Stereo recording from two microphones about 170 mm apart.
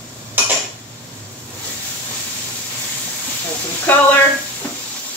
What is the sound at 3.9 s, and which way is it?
Speech, 10° left (ahead or behind).